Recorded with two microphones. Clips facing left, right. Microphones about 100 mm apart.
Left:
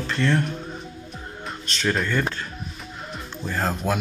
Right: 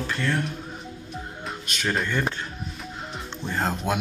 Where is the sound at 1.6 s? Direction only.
10° right (ahead or behind).